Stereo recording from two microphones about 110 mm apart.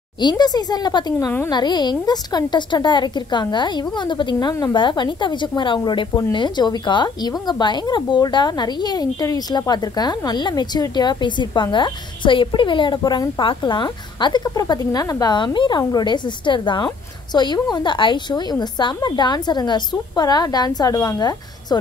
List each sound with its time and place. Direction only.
0.2 s a woman's voice: 40° left (ahead or behind)